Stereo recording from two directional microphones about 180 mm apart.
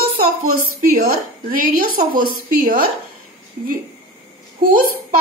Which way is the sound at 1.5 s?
55° right (ahead or behind).